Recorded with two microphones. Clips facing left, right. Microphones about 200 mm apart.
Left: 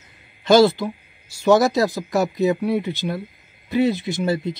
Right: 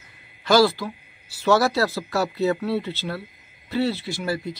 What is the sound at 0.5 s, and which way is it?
Speech, 20° left (ahead or behind).